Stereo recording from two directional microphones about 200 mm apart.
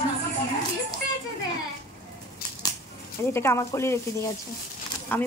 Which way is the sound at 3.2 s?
15° left (ahead or behind).